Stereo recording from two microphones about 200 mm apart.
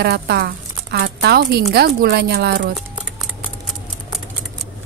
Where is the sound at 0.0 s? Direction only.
55° right (ahead or behind).